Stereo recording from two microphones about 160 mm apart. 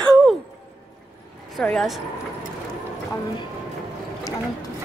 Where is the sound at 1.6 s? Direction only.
5° left (ahead or behind).